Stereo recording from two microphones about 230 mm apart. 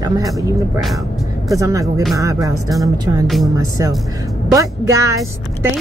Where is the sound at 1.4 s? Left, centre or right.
Centre.